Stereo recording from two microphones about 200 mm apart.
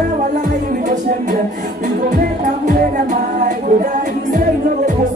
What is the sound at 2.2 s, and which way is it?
Music, 40° right (ahead or behind).